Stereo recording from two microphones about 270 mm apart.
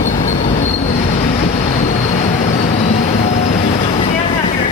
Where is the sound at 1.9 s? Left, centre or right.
Left.